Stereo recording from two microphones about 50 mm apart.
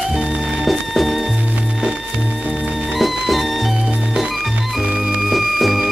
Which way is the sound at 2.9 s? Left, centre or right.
Centre.